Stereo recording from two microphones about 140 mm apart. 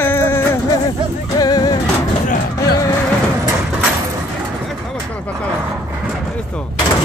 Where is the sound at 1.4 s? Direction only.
30° left (ahead or behind).